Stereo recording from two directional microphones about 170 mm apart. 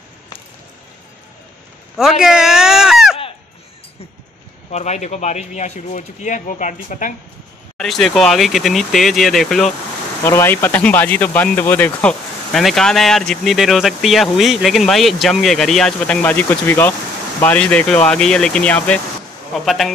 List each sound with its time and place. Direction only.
2.0 s a sound: centre (ahead or behind)
4.6 s speech: 40° left (ahead or behind)
7.7 s speech: centre (ahead or behind)
10.2 s speech: 15° left (ahead or behind)